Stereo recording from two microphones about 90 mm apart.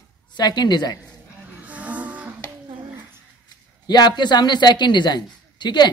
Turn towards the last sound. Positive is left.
turn(degrees=55)  # may be behind; listen again after turning